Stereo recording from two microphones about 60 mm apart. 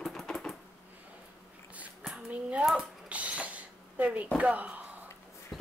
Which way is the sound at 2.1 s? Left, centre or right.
Centre.